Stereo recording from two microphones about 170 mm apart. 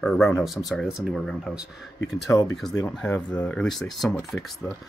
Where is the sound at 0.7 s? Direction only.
Centre (ahead or behind).